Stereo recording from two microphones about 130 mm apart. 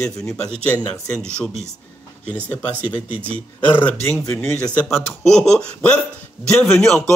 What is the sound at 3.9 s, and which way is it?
Speech, 20° left (ahead or behind).